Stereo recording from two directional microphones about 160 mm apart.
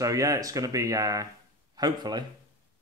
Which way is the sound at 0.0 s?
20° right (ahead or behind).